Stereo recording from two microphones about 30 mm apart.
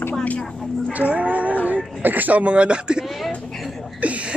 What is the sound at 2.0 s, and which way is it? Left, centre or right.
Speech, right.